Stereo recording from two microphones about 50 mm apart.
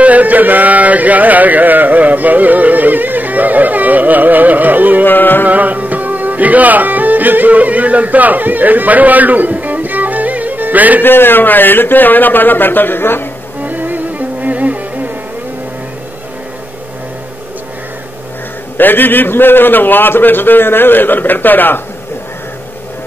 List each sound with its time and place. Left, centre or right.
0.0 s a sound: right
5.0 s a man's voice: left
5.5 s music: right
11.0 s speech: left
13.6 s music: right
18.8 s a man's voice: left